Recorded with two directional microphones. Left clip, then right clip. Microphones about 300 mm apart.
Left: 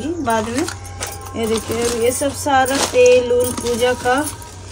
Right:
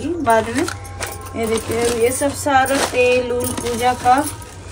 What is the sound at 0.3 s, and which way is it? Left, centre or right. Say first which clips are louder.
Speech: right 4 dB; centre.